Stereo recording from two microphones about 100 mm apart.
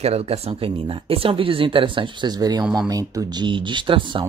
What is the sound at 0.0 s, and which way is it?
Speech, 90° right.